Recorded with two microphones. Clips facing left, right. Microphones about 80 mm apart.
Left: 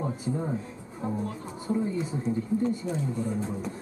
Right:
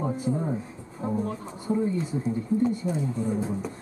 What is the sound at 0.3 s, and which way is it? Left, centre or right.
Speech, right.